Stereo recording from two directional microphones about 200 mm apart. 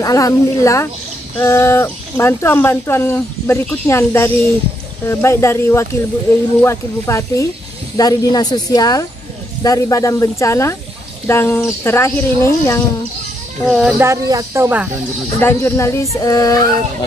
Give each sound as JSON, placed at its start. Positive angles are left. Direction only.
{"t": 0.0, "sound": "speech", "side_deg": 15}
{"t": 13.7, "sound": "speech", "side_deg": -5}
{"t": 15.4, "sound": "speech", "side_deg": 15}